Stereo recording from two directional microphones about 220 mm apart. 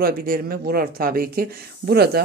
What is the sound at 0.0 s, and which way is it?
Speech, 45° right (ahead or behind).